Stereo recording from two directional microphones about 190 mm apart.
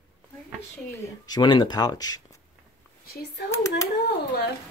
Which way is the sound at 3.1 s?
60° left (ahead or behind).